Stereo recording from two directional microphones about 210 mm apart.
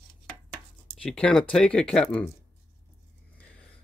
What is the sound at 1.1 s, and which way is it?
Speech, 5° left (ahead or behind).